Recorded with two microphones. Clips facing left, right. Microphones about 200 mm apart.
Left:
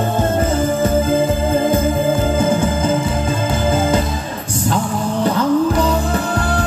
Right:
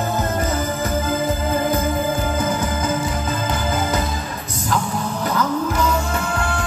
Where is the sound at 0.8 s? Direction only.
25° left (ahead or behind).